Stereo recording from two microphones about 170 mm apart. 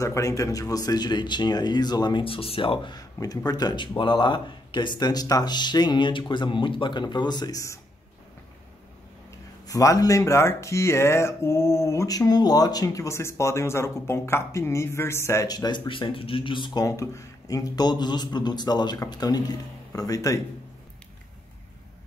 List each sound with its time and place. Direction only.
0.0 s speech: 20° left (ahead or behind)
9.7 s speech: 20° left (ahead or behind)